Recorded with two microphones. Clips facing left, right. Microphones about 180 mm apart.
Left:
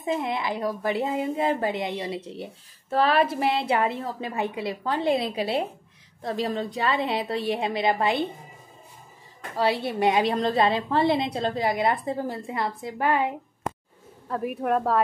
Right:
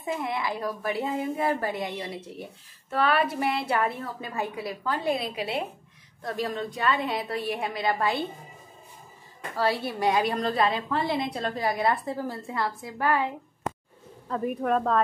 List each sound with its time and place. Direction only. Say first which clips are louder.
0.0 s a woman's voice: left 3 dB; 20° left (ahead or behind)
9.6 s a woman's voice: left 3 dB; 20° left (ahead or behind)
14.2 s a woman's voice: even; 5° left (ahead or behind)